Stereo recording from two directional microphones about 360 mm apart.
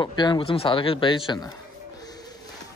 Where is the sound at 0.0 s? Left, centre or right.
Centre.